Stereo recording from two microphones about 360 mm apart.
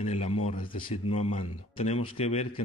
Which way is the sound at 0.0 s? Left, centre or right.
Centre.